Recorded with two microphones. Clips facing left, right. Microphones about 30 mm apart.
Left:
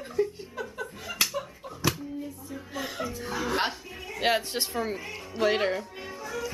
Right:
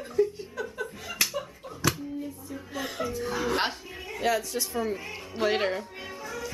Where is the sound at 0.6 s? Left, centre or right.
Centre.